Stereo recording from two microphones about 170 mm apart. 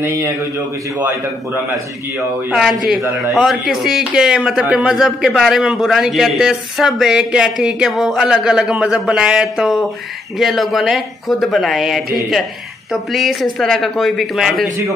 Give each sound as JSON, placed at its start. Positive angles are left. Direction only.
{"t": 0.0, "sound": "a man's voice", "side_deg": -15}